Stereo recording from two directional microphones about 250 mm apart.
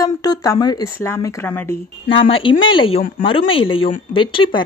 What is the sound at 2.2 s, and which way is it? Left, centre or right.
Speech, left.